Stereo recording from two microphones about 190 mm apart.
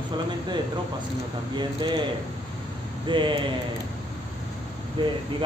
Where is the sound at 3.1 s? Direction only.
25° right (ahead or behind).